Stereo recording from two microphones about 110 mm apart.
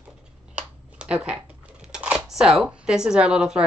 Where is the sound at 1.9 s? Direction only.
10° right (ahead or behind).